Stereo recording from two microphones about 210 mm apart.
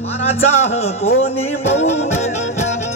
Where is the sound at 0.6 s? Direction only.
30° left (ahead or behind).